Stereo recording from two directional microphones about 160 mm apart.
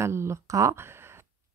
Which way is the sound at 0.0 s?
15° right (ahead or behind).